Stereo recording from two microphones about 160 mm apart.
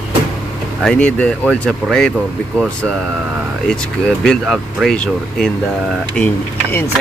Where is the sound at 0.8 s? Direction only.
5° left (ahead or behind).